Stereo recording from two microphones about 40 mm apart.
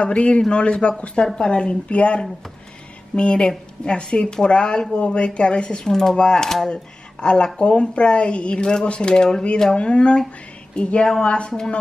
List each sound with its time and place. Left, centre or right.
0.0 s speech: left; by 6.7 s centre
6.7 s speech: left